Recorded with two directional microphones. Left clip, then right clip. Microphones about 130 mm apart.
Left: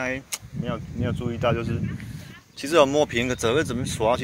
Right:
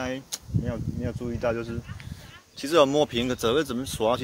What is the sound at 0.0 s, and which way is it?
Speech, 20° right (ahead or behind).